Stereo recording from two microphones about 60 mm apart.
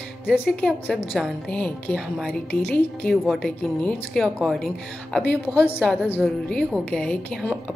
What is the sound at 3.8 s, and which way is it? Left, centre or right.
Speech, centre.